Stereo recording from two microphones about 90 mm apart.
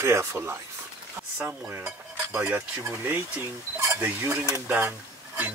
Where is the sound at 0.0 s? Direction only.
30° right (ahead or behind).